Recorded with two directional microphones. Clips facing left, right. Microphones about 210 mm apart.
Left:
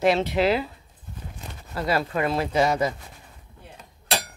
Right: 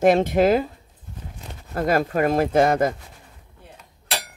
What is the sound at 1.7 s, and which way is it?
Speech, 50° right (ahead or behind).